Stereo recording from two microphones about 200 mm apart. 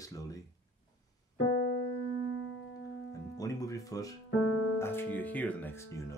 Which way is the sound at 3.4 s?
15° left (ahead or behind).